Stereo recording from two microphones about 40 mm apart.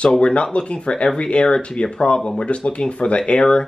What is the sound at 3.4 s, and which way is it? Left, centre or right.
Speech, centre.